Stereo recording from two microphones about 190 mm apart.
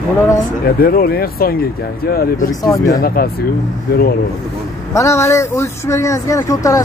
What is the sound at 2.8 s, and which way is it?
Speech, 50° left (ahead or behind).